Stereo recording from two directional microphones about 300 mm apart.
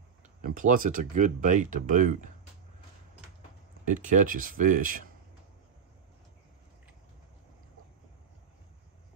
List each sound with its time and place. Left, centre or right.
0.4 s speech: right
3.8 s speech: right